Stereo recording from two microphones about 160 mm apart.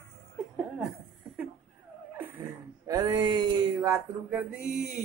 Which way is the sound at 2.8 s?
20° right (ahead or behind).